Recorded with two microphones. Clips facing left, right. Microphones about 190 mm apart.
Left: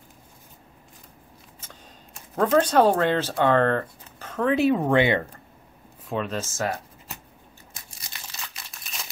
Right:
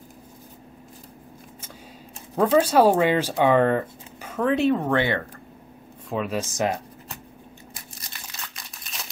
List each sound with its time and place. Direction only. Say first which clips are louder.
2.3 s speech: right 1 dB; 10° right (ahead or behind); by 5.2 s 15° left (ahead or behind)
6.0 s speech: right 2 dB; 5° right (ahead or behind)
6.5 s speech: right 4 dB; 20° right (ahead or behind)
8.5 s crumpling: right 1 dB; centre (ahead or behind)